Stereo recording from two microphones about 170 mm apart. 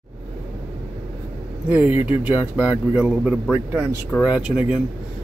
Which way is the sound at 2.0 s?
35° left (ahead or behind).